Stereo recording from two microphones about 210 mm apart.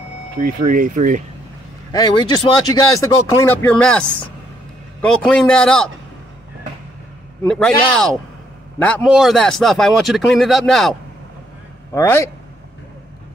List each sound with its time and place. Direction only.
0.4 s speech: 40° right (ahead or behind)
1.9 s speech: 20° left (ahead or behind)
5.0 s speech: 5° left (ahead or behind)
7.4 s speech: 5° left (ahead or behind)
11.9 s speech: 10° left (ahead or behind)